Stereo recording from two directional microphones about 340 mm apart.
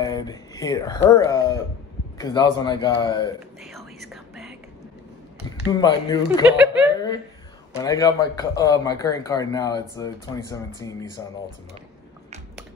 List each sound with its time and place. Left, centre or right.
0.0 s speech: centre
3.6 s whispering: centre
5.7 s speech: centre
6.4 s speech: centre
7.7 s speech: centre